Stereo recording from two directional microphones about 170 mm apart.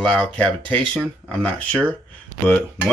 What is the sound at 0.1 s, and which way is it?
Speech, 5° left (ahead or behind).